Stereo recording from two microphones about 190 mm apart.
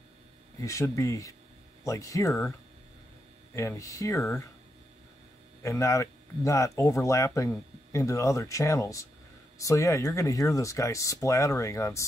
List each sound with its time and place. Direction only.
0.6 s speech: 15° left (ahead or behind)
3.5 s speech: 15° left (ahead or behind)
5.6 s speech: 15° left (ahead or behind)